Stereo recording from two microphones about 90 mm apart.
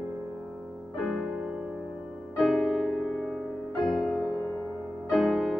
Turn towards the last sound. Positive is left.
turn(degrees=0)  # may be behind; listen again after turning